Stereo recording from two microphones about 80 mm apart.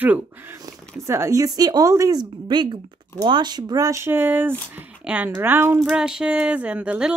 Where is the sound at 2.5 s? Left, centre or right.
Right.